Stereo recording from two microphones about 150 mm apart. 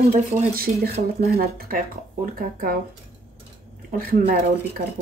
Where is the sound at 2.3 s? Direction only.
75° right (ahead or behind).